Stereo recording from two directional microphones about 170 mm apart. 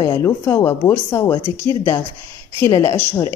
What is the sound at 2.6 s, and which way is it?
Speech, 15° left (ahead or behind).